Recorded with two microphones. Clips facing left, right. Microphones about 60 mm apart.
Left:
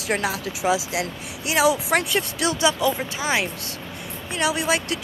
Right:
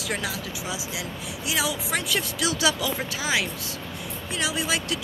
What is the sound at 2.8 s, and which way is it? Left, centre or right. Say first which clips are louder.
Speech: left 5 dB; left.